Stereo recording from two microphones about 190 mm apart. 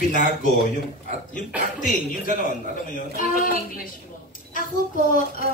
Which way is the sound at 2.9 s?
45° left (ahead or behind).